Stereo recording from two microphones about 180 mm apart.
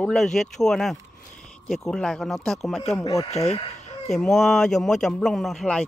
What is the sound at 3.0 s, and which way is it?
Speech, 20° left (ahead or behind).